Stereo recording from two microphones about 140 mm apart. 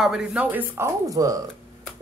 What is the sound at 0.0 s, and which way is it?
A woman's voice, 5° right (ahead or behind).